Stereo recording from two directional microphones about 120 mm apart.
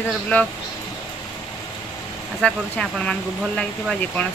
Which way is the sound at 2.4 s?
5° left (ahead or behind).